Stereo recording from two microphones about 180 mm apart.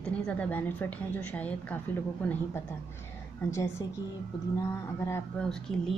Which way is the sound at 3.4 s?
15° left (ahead or behind).